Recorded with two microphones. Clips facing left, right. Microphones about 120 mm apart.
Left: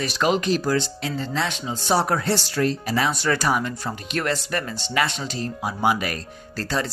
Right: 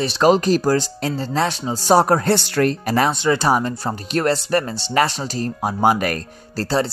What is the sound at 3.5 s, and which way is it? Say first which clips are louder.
Speech: right 5 dB; 35° right (ahead or behind).